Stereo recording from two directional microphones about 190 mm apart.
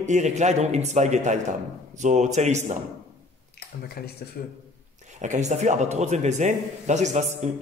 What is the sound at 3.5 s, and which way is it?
Speech, 55° left (ahead or behind).